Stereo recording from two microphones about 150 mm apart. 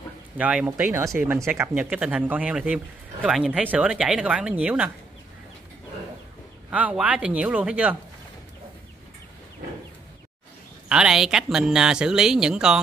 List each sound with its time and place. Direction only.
0.4 s a man's voice: 10° right (ahead or behind)
0.7 s a man's voice: 20° right (ahead or behind)
6.7 s a man's voice: 10° right (ahead or behind)
10.9 s speech: 5° right (ahead or behind)